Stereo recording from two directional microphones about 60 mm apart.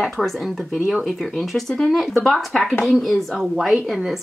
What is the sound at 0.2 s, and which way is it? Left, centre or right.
A woman's voice, centre.